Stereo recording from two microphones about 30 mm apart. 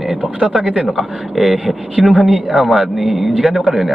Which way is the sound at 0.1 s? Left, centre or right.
Right.